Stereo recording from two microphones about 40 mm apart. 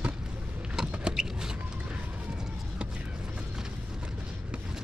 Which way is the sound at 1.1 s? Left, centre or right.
Centre.